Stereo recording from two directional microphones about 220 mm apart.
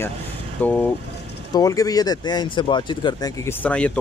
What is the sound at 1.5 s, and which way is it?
Speech, 15° left (ahead or behind).